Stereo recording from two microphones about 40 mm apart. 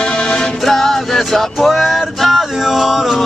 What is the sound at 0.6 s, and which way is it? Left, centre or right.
Music, centre.